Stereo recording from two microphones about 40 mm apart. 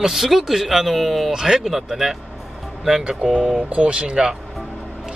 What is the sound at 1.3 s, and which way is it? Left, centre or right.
Speech, centre.